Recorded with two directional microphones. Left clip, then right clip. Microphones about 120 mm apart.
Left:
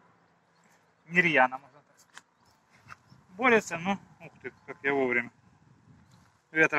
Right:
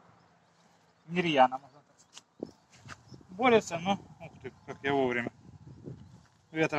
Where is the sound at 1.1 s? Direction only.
20° right (ahead or behind).